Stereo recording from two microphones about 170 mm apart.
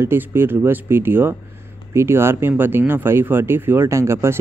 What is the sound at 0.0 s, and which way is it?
Speech, 15° right (ahead or behind).